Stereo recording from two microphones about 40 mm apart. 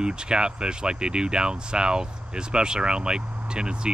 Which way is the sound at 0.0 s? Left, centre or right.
Right.